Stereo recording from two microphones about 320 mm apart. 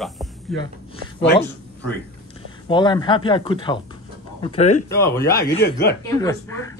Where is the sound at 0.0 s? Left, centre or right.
Centre.